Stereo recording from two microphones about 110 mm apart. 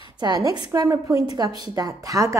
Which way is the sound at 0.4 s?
30° right (ahead or behind).